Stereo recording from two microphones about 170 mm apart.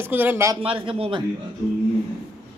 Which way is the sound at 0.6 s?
35° right (ahead or behind).